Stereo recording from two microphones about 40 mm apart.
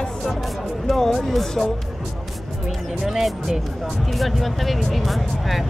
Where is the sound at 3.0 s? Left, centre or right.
Centre.